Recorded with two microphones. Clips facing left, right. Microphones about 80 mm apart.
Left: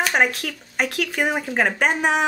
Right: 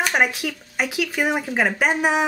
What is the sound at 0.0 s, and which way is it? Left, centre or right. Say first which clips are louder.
Speech: even; centre.